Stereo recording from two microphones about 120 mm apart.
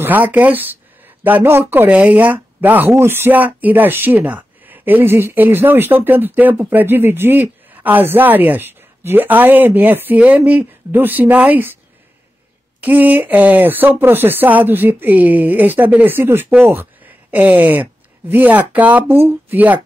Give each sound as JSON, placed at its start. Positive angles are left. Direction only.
{"t": 0.0, "sound": "speech", "side_deg": -15}
{"t": 12.8, "sound": "speech", "side_deg": -15}